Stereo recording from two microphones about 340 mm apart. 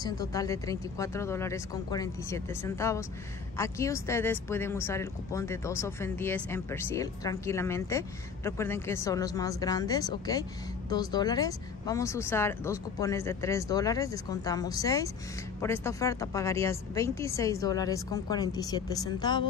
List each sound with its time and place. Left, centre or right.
0.0 s speech: centre